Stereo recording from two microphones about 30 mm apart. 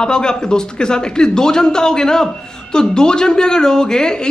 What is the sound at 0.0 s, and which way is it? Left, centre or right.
Speech, left.